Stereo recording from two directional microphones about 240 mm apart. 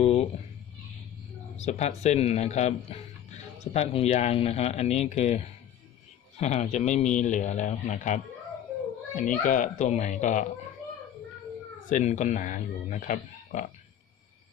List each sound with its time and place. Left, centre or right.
0.0 s a sound: left
1.6 s speech: left
11.9 s speech: left